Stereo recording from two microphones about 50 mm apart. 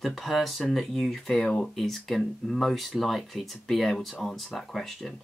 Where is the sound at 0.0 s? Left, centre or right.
Centre.